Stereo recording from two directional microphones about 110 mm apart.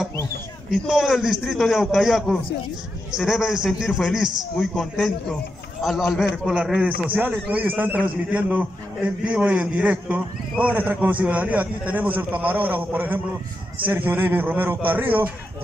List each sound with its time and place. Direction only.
0.7 s a man's voice: 5° right (ahead or behind)